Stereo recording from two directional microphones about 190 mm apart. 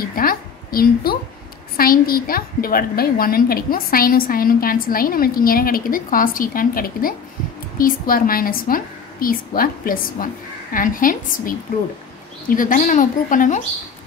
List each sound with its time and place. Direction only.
0.0 s a woman's voice: 50° left (ahead or behind)